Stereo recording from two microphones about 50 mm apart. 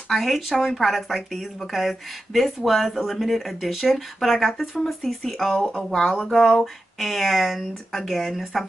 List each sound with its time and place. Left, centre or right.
0.1 s speech: centre